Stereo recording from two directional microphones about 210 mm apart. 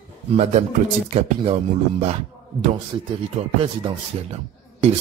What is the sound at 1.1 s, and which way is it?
Speech, 25° right (ahead or behind).